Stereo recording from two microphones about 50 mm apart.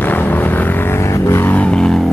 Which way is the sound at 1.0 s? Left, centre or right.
Left.